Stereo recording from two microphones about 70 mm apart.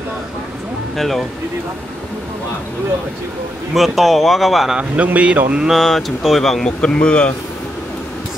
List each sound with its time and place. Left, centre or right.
0.9 s speech: centre
3.7 s speech: centre
4.7 s a man's voice: right
5.7 s speech: centre